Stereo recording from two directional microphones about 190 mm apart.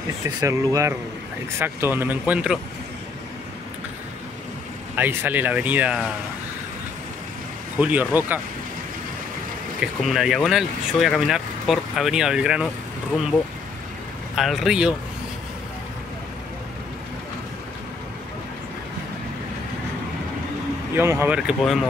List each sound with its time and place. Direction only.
0.4 s speech: 15° right (ahead or behind)
4.9 s speech: 10° right (ahead or behind)
7.8 s speech: 10° right (ahead or behind)
9.8 s speech: centre (ahead or behind)
14.3 s speech: centre (ahead or behind)
20.9 s speech: 15° right (ahead or behind)